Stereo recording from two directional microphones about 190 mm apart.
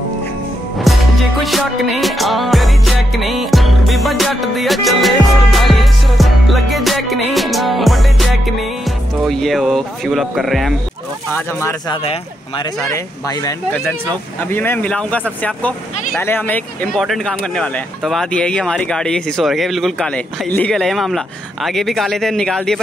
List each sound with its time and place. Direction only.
0.9 s music: centre (ahead or behind)
11.9 s speech: 30° left (ahead or behind)
12.9 s speech: 20° left (ahead or behind)